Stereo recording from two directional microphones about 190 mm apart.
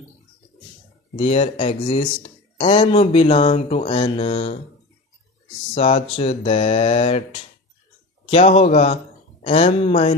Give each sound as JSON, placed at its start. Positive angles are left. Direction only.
{"t": 1.1, "sound": "speech", "side_deg": 35}
{"t": 5.8, "sound": "a man's voice", "side_deg": 35}